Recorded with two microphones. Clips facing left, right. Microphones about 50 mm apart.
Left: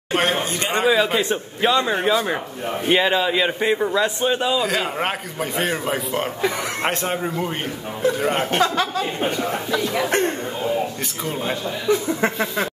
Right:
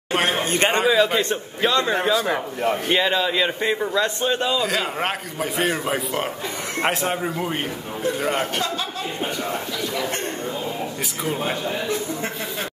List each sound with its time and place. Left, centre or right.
0.1 s a sound: centre
0.5 s a man's voice: right
0.7 s a man's voice: centre